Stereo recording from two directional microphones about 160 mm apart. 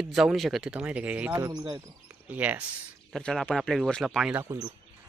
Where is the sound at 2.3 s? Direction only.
10° right (ahead or behind).